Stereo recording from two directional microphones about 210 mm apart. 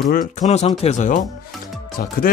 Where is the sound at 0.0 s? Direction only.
40° left (ahead or behind).